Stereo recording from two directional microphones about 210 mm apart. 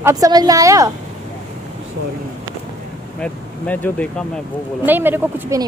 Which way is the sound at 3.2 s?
5° left (ahead or behind).